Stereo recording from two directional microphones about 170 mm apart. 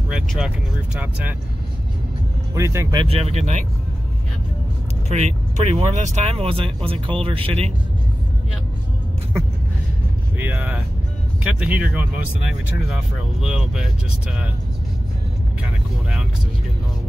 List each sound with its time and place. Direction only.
0.1 s vehicle: centre (ahead or behind)
0.9 s speech: 10° right (ahead or behind)
2.5 s speech: 15° right (ahead or behind)
3.0 s speech: 35° right (ahead or behind)
5.0 s speech: 40° right (ahead or behind)
10.3 s speech: 10° right (ahead or behind)